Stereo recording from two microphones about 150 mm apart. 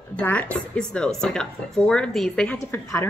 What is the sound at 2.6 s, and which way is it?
Speech, 20° left (ahead or behind).